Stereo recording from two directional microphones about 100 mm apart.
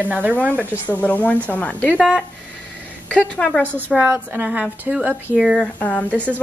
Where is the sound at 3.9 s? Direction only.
10° right (ahead or behind).